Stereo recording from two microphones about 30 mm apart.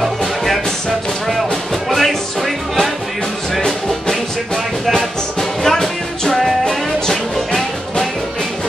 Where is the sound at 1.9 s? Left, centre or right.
Centre.